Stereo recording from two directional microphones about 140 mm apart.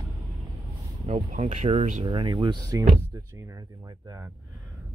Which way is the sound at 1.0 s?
55° right (ahead or behind).